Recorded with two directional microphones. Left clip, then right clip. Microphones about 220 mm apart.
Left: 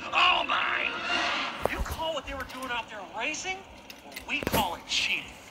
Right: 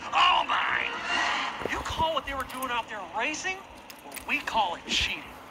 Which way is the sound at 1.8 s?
45° right (ahead or behind).